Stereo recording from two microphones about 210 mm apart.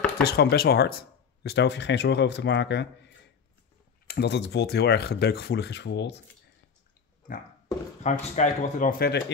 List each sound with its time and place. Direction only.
0.2 s speech: 50° left (ahead or behind)
4.1 s speech: 55° left (ahead or behind)
8.0 s speech: 35° left (ahead or behind)